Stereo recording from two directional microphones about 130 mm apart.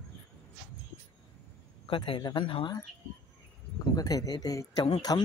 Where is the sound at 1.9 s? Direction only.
35° left (ahead or behind).